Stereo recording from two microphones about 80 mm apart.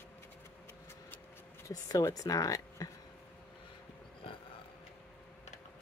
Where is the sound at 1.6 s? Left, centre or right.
Left.